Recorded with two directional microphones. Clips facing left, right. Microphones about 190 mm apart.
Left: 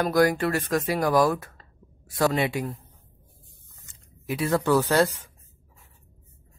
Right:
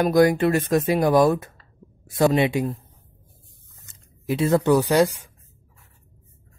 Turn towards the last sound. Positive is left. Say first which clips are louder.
# right 3 dB
turn(degrees=-15)  # may be behind; listen again after turning